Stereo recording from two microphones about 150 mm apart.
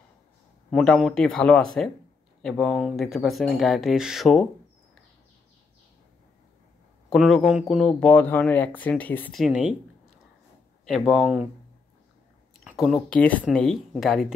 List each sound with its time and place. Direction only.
0.7 s speech: centre (ahead or behind)
7.1 s speech: centre (ahead or behind)
9.4 s speech: 5° right (ahead or behind)
10.9 s speech: 5° right (ahead or behind)
12.5 s speech: centre (ahead or behind)